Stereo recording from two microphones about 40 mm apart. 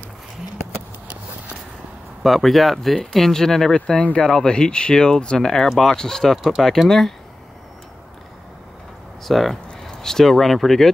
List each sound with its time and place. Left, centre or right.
2.2 s speech: centre
3.8 s speech: left; by 6.3 s centre
6.3 s speech: centre
9.2 s speech: centre